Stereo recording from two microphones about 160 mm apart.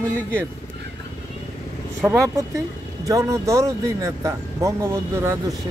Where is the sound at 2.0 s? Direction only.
15° right (ahead or behind).